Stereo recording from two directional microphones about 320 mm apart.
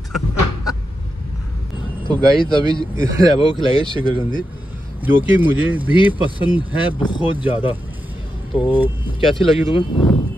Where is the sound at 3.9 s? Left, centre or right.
Centre.